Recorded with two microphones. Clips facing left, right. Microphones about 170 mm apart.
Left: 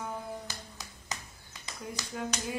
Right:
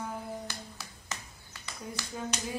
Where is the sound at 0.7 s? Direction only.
20° left (ahead or behind).